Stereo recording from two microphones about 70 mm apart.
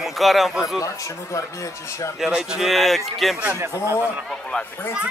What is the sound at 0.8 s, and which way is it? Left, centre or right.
Speech, left.